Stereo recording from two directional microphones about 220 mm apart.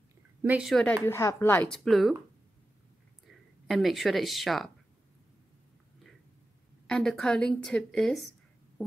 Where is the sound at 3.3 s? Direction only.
Centre (ahead or behind).